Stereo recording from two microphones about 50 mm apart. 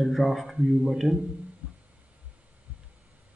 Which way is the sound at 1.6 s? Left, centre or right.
Right.